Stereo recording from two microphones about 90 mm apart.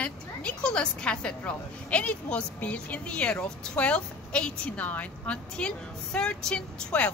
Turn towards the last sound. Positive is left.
turn(degrees=10)  # may be behind; listen again after turning